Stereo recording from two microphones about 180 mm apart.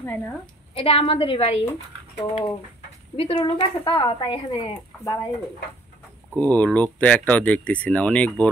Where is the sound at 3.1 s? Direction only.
30° left (ahead or behind).